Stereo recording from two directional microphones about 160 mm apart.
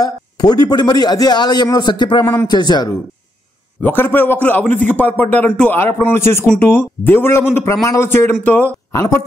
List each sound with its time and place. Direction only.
0.0 s a man's voice: 25° left (ahead or behind)
3.8 s a man's voice: 15° left (ahead or behind)